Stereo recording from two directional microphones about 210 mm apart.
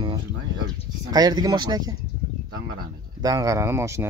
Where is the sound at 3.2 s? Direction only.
15° right (ahead or behind).